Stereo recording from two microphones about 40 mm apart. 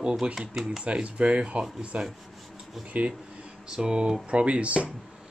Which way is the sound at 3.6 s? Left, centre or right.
Centre.